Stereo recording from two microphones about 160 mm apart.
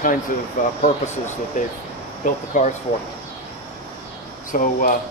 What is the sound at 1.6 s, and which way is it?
Speech, 55° left (ahead or behind).